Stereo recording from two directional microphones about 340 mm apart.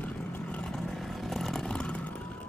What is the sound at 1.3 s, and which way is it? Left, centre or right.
Vehicle, centre.